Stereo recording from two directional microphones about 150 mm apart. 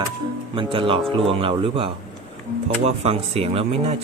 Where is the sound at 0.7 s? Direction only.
35° right (ahead or behind).